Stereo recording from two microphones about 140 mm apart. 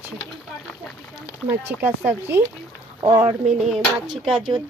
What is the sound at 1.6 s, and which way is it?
Speech, 15° right (ahead or behind).